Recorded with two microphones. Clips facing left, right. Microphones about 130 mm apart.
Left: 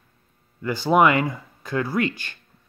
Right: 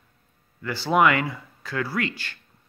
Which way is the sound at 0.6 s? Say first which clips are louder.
Left 3 dB; 20° left (ahead or behind).